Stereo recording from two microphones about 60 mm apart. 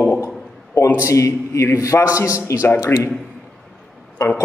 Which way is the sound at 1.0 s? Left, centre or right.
Left.